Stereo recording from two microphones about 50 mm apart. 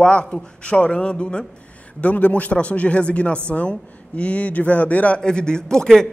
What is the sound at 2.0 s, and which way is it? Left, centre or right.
Speech, left.